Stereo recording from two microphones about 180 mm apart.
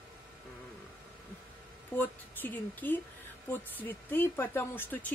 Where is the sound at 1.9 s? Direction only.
10° left (ahead or behind).